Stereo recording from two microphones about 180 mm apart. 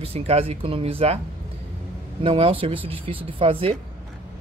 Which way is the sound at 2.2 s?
30° right (ahead or behind).